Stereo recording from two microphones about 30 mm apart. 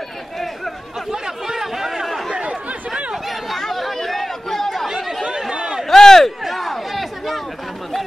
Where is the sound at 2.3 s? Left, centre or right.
Right.